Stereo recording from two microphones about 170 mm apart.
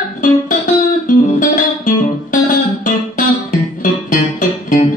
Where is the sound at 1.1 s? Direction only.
50° left (ahead or behind).